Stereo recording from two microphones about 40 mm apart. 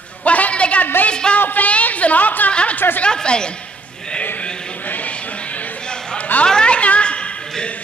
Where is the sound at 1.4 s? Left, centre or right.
Left.